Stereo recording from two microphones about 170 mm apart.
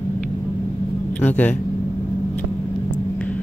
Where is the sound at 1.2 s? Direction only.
10° left (ahead or behind).